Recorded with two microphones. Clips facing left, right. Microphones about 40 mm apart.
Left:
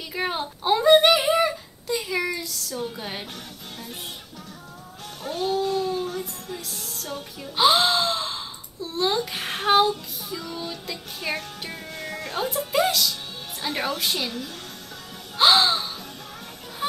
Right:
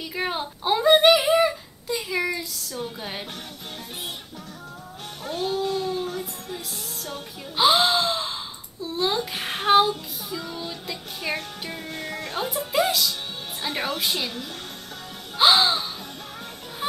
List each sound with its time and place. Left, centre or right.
0.1 s a sound: centre
5.2 s music: centre
8.8 s child singing: centre
11.6 s music: centre
13.6 s a woman's voice: centre
15.3 s music: centre